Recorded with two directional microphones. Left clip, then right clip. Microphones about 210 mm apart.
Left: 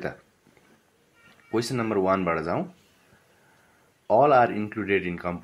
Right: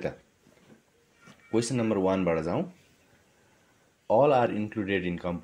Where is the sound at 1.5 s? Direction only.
25° right (ahead or behind).